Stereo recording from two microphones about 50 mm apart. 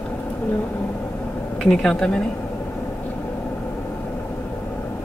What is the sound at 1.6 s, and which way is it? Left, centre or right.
Speech, centre.